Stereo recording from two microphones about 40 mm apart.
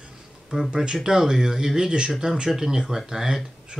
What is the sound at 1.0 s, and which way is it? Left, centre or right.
A man's voice, centre.